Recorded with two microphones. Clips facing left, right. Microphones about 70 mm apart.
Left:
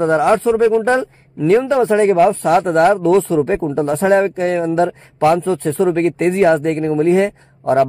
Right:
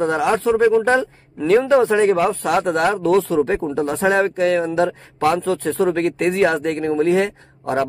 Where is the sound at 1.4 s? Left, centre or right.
Left.